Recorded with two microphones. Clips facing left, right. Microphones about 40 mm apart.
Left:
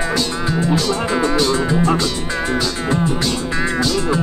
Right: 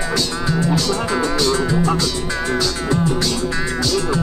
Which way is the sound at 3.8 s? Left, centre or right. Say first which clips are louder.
Even; left.